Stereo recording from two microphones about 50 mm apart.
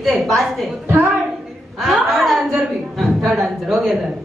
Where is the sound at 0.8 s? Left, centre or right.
Right.